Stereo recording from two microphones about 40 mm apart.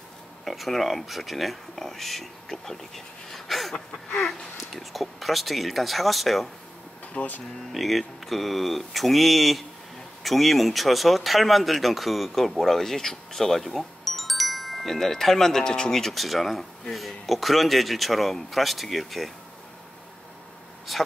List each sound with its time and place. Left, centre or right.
0.5 s speech: centre
4.7 s speech: centre
7.2 s speech: left
7.7 s speech: centre
13.7 s chime: centre
16.0 s speech: centre
20.9 s speech: centre